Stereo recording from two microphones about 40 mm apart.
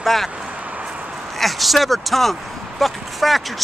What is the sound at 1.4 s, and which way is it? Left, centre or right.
Speech, centre.